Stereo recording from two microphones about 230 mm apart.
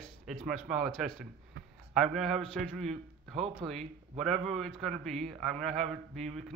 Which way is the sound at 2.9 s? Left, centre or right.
Right.